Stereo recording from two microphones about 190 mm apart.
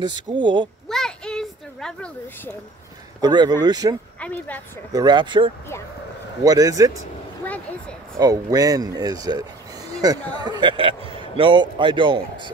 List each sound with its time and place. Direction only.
0.0 s a man's voice: 25° right (ahead or behind)
0.8 s a sound: 5° left (ahead or behind)
3.2 s a man's voice: 20° right (ahead or behind)
4.2 s a woman's voice: 10° left (ahead or behind)
4.9 s a man's voice: 25° right (ahead or behind)
8.2 s a man's voice: 20° right (ahead or behind)